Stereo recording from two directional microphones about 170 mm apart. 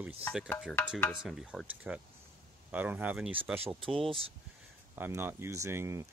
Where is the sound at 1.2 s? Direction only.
5° right (ahead or behind).